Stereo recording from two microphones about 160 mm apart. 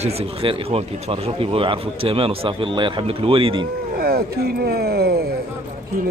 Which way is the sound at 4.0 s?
70° right (ahead or behind).